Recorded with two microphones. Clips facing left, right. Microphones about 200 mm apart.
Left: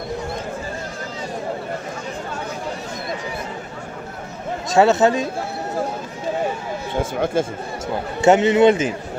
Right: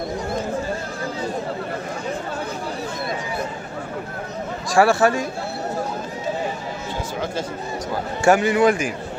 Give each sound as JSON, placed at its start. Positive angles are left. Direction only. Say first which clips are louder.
{"t": 4.6, "sound": "a man's voice", "louder": "left 2 dB", "side_deg": 20}
{"t": 7.0, "sound": "speech", "louder": "left 8 dB", "side_deg": 50}
{"t": 8.2, "sound": "a man's voice", "louder": "left 3 dB", "side_deg": 20}